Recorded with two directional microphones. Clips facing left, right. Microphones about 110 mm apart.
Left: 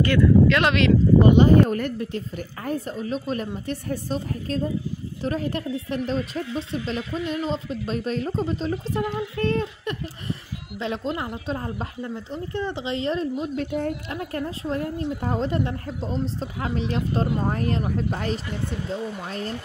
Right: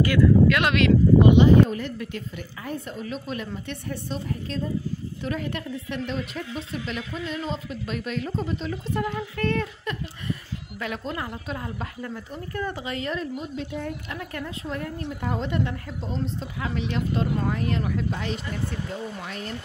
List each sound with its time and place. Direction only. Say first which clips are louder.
0.0 s speech: left 1 dB; 5° right (ahead or behind)
1.2 s speech: left 1 dB; 45° left (ahead or behind)
2.0 s speech: left 4 dB; 40° left (ahead or behind)
10.8 s speech: left 4 dB; 25° left (ahead or behind)